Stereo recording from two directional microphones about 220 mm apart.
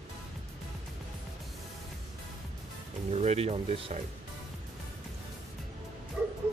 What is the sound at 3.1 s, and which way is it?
Speech, 30° right (ahead or behind).